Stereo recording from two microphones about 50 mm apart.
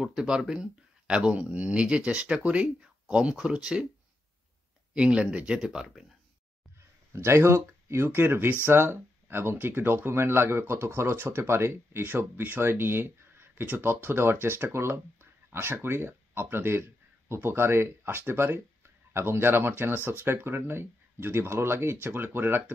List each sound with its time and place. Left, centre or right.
0.0 s speech: centre
4.9 s speech: right
5.7 s speech: centre
7.2 s speech: right
12.1 s speech: right
22.0 s speech: right